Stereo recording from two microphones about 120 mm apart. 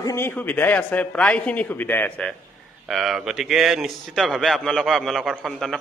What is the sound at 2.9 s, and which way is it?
A man's voice, centre (ahead or behind).